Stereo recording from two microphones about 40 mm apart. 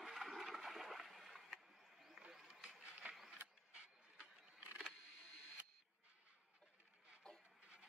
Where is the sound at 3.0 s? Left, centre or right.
Right.